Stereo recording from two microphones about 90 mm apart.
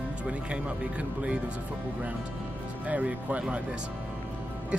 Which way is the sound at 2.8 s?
15° right (ahead or behind).